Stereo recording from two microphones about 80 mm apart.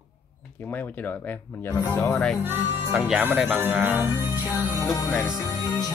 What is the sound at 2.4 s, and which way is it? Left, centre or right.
Speech, right.